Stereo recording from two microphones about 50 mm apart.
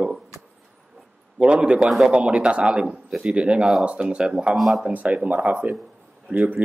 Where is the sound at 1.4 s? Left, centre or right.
Right.